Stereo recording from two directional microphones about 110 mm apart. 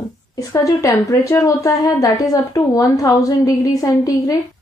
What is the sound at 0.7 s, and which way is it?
A woman's voice, 30° left (ahead or behind).